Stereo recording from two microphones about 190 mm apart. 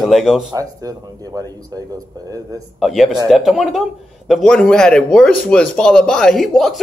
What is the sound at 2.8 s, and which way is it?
Speech, centre (ahead or behind).